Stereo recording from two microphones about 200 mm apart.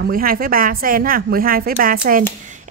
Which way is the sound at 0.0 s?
45° right (ahead or behind).